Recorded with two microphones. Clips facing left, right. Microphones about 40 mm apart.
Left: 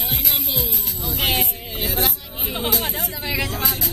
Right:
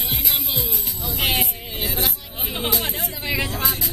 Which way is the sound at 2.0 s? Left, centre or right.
Centre.